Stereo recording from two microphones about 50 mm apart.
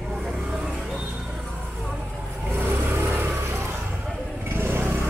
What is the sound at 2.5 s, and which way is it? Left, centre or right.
Vehicle, right.